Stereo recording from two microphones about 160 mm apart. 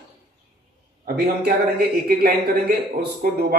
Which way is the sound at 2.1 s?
70° right (ahead or behind).